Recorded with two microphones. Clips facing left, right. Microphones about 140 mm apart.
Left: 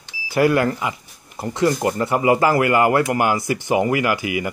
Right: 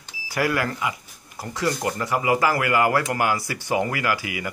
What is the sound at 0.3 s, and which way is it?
Speech, 25° left (ahead or behind).